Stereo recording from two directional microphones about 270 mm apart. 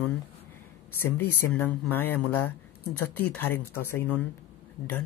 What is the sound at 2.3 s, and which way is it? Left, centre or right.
Speech, left.